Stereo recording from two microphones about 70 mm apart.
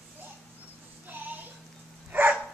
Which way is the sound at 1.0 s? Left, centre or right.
Right.